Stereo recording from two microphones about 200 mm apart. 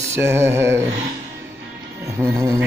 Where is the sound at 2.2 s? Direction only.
15° right (ahead or behind).